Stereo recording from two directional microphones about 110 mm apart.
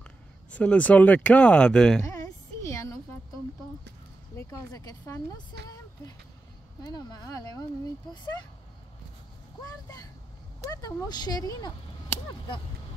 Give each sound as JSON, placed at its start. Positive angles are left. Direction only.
{"t": 0.5, "sound": "speech", "side_deg": 10}
{"t": 2.0, "sound": "a sound", "side_deg": 30}
{"t": 4.4, "sound": "speech", "side_deg": 30}
{"t": 6.8, "sound": "speech", "side_deg": 35}
{"t": 9.6, "sound": "speech", "side_deg": 35}